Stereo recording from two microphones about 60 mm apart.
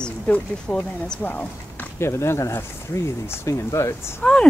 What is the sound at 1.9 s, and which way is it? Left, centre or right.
Speech, left.